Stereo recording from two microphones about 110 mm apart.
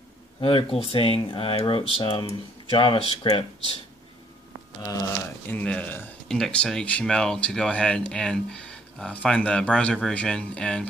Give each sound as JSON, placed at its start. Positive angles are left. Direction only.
{"t": 0.4, "sound": "speech", "side_deg": 55}
{"t": 5.5, "sound": "speech", "side_deg": 10}